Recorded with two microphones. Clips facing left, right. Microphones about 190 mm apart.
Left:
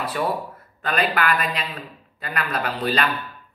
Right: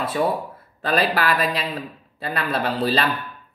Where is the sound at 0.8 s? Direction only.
35° right (ahead or behind).